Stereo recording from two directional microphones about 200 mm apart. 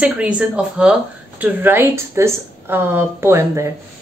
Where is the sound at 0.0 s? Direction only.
5° right (ahead or behind).